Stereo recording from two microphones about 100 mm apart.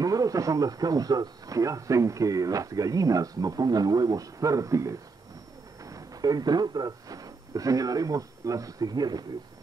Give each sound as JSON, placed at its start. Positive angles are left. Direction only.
{"t": 0.0, "sound": "a man's voice", "side_deg": -35}